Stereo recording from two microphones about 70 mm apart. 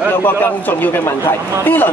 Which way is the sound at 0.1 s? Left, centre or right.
Left.